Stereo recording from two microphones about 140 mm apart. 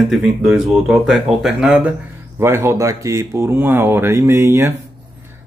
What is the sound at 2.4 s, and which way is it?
Speech, 15° right (ahead or behind).